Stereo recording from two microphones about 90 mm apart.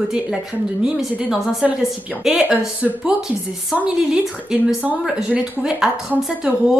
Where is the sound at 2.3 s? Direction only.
15° right (ahead or behind).